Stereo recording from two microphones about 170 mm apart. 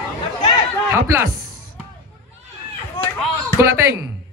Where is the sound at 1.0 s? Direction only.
15° right (ahead or behind).